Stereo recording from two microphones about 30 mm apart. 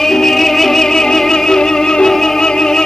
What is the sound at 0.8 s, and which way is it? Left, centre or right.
Music, centre.